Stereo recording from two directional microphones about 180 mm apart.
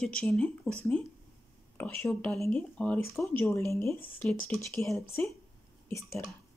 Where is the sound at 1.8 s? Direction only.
10° left (ahead or behind).